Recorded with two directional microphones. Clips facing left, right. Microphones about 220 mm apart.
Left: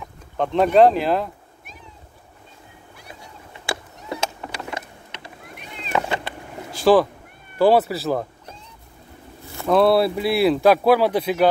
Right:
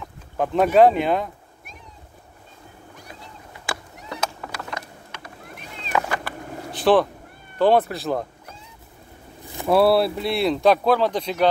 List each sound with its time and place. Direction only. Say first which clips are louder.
0.4 s speech: left 1 dB; 5° right (ahead or behind)
4.1 s a sound: left 2 dB; 25° left (ahead or behind)
5.9 s cat: left 1 dB; 25° left (ahead or behind)
6.7 s cat: left 2 dB; centre (ahead or behind)
7.5 s speech: left 2 dB; 5° left (ahead or behind)
9.6 s speech: left 1 dB; 5° right (ahead or behind)